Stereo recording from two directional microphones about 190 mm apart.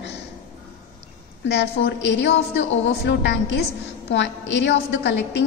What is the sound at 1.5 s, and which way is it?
A woman's voice, 60° left (ahead or behind).